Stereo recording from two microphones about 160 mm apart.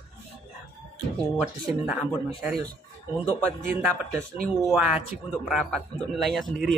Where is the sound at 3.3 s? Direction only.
15° right (ahead or behind).